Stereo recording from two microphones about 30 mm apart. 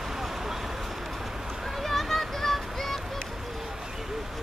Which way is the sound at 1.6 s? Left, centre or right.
Centre.